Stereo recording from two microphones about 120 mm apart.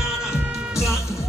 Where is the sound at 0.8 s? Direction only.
25° left (ahead or behind).